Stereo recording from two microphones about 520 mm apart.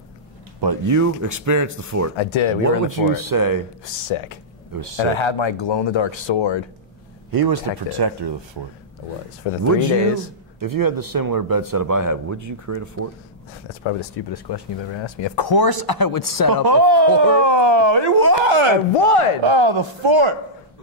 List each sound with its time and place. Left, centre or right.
0.8 s speech: right
2.1 s speech: left
2.9 s speech: right
3.8 s speech: left
7.2 s speech: right
9.7 s speech: right
9.9 s speech: left
10.6 s speech: right
13.7 s speech: left
14.3 s speech: left
16.6 s speech: right
18.4 s speech: right
18.9 s speech: left
19.4 s a man's voice: right